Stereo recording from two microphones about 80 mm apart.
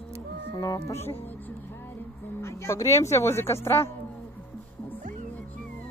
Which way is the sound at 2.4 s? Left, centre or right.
Left.